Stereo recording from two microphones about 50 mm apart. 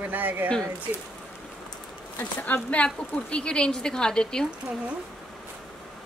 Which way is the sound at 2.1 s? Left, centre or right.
Left.